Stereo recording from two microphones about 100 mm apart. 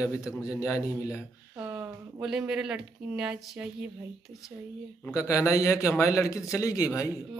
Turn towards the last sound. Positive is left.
turn(degrees=35)  # may be behind; listen again after turning